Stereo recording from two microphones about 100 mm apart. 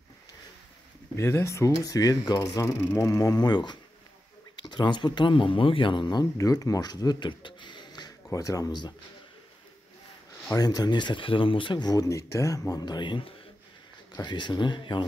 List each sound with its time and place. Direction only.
1.1 s speech: 25° left (ahead or behind); by 6.2 s 50° left (ahead or behind)
6.3 s speech: 35° left (ahead or behind)
8.3 s speech: 35° left (ahead or behind)
10.5 s speech: 40° left (ahead or behind)